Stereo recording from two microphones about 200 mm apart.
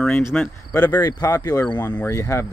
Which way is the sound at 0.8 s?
20° left (ahead or behind).